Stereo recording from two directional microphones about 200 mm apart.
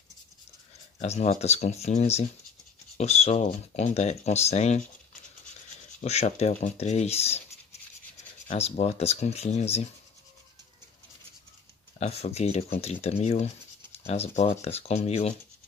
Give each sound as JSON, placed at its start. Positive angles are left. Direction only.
{"t": 0.9, "sound": "speech", "side_deg": 35}
{"t": 5.9, "sound": "speech", "side_deg": 35}
{"t": 8.5, "sound": "speech", "side_deg": 35}
{"t": 12.0, "sound": "speech", "side_deg": 30}